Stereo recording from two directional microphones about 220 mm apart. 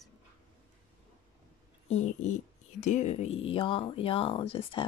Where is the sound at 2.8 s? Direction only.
35° left (ahead or behind).